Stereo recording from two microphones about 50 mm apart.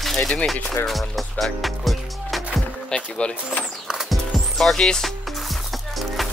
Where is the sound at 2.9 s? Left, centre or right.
Centre.